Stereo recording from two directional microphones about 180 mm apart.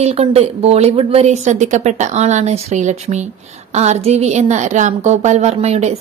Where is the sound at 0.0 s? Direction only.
35° right (ahead or behind).